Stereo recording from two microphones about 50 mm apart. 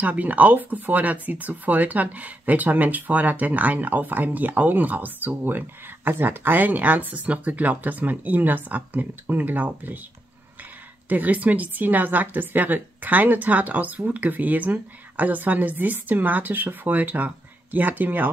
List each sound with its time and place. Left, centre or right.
0.0 s a woman's voice: right
11.1 s a woman's voice: right